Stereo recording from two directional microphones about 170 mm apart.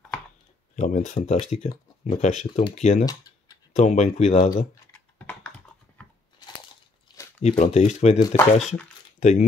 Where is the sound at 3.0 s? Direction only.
20° left (ahead or behind).